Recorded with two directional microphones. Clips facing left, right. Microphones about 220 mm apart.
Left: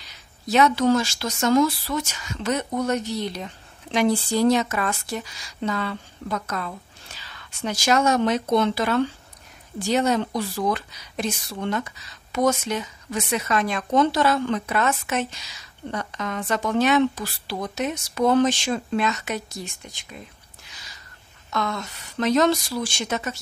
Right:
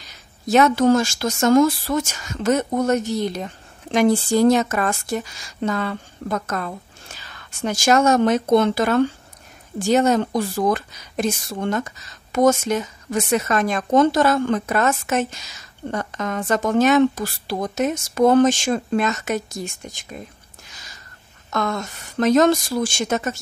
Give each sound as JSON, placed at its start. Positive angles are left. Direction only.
{"t": 0.0, "sound": "a woman's voice", "side_deg": -45}
{"t": 20.6, "sound": "a sound", "side_deg": -45}
{"t": 21.5, "sound": "a woman's voice", "side_deg": -50}